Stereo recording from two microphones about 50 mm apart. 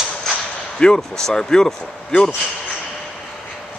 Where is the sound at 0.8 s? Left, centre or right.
Centre.